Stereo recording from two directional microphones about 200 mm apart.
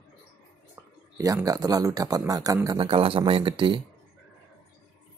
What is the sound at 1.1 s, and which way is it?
A man's voice, 15° right (ahead or behind).